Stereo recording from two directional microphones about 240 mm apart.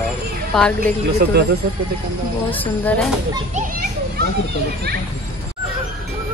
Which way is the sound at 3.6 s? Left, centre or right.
Right.